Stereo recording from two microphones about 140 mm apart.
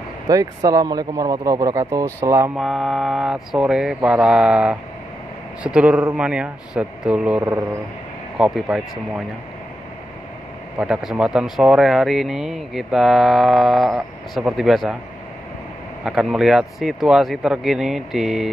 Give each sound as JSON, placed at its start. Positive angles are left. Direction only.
{"t": 0.3, "sound": "speech", "side_deg": -25}
{"t": 2.5, "sound": "speech", "side_deg": 0}
{"t": 10.8, "sound": "speech", "side_deg": -5}
{"t": 16.0, "sound": "speech", "side_deg": -5}